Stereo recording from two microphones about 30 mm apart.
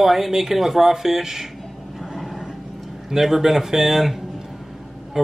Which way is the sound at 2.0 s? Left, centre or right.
Centre.